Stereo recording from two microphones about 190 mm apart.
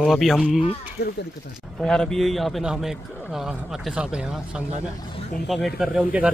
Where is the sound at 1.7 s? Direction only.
5° left (ahead or behind).